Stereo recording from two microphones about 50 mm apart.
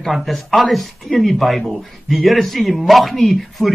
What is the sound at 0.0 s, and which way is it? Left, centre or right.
A man's voice, centre.